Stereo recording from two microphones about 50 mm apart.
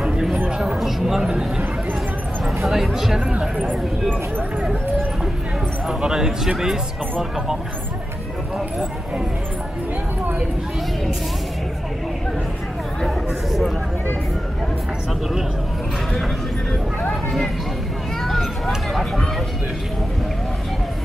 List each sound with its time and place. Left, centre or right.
0.0 s chatter: centre
0.7 s speech: centre
2.4 s speech: centre
3.3 s speech: right
5.9 s speech: centre
13.0 s a sound: centre
18.2 s a sound: centre